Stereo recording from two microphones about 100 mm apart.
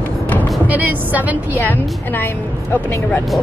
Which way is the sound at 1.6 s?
20° left (ahead or behind).